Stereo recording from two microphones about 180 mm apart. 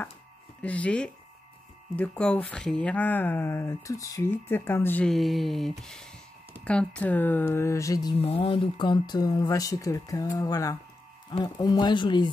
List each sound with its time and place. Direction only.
0.6 s speech: 5° left (ahead or behind)
8.2 s speech: 30° left (ahead or behind)